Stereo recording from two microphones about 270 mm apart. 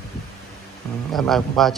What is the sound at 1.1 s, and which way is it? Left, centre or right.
Speech, centre.